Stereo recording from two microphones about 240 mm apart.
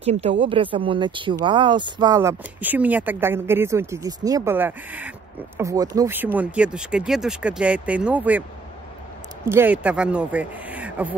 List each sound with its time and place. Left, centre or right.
0.0 s speech: right; by 11.1 s centre